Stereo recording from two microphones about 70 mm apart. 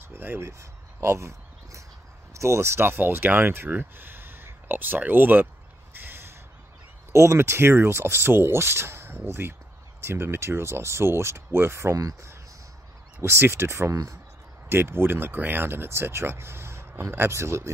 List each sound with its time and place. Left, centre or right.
0.1 s speech: right
6.0 s a sound: right
7.1 s speech: right
12.0 s speech: right
13.2 s speech: right